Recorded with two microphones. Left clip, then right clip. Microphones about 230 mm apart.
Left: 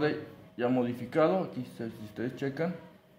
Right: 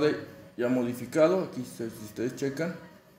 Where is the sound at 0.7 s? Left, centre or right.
Left.